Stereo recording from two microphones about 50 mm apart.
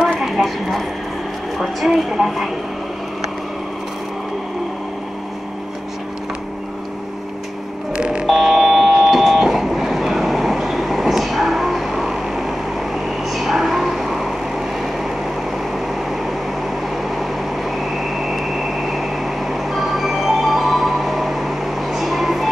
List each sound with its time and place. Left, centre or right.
0.2 s a sound: centre
1.6 s a woman's voice: centre
7.9 s fire alarm: centre
8.3 s fire alarm: centre
9.0 s train: centre
16.9 s vehicle: centre